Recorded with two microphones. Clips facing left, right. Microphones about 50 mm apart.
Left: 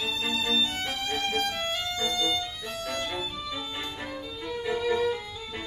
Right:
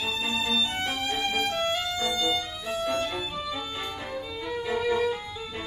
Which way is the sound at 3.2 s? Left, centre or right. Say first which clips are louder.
Right 2 dB; centre.